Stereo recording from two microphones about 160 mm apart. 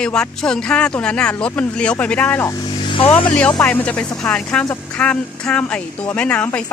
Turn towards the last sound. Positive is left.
turn(degrees=10)  # may be behind; listen again after turning